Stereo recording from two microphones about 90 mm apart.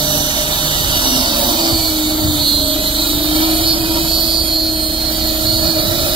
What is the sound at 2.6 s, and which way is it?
Vehicle, 80° right.